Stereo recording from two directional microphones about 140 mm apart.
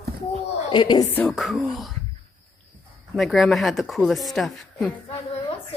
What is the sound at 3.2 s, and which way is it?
Speech, centre (ahead or behind).